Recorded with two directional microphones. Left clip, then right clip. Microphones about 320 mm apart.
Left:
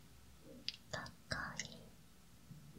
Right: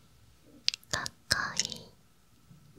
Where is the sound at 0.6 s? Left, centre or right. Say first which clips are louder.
Right 14 dB; right.